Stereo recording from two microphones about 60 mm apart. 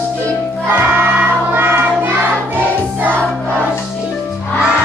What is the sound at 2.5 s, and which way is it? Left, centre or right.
Choir, right.